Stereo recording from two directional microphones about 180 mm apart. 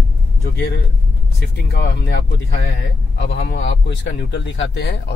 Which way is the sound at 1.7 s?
60° left (ahead or behind).